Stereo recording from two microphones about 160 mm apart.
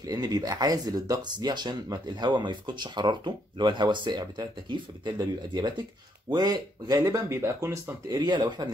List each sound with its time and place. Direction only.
0.0 s speech: 25° right (ahead or behind)